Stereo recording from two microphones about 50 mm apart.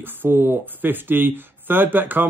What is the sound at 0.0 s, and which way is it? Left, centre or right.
Speech, right.